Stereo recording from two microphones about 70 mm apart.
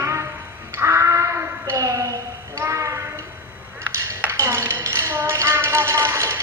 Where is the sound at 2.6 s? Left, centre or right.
Right.